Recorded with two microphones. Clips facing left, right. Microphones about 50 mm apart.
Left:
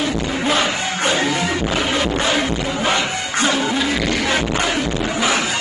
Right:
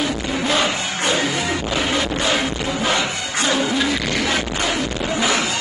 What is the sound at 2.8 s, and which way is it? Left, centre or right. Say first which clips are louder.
Music: left 1 dB; left.